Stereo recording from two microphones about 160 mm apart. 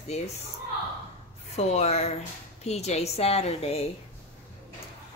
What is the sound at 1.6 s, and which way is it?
A woman's voice, 45° left (ahead or behind).